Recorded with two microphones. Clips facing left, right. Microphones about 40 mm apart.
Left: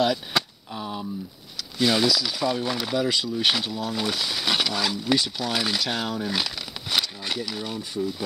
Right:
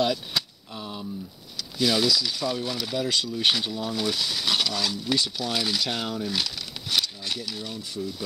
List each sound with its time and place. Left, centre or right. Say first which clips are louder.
0.3 s a sound: left 4 dB; left
0.7 s a sound: left 4 dB; centre
1.8 s speech: left 2 dB; left
2.2 s speech: left 3 dB; left
2.6 s speech: left 3 dB; left
3.0 s speech: left 1 dB; centre
3.6 s speech: left 1 dB; centre
3.9 s speech: even; left
5.8 s speech: left 1 dB; centre
6.1 s speech: left 2 dB; left